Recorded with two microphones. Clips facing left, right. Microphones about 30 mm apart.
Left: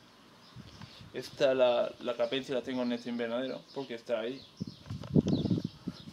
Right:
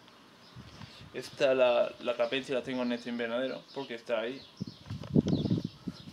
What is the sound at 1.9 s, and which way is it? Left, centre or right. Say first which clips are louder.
Speech: right 1 dB; centre.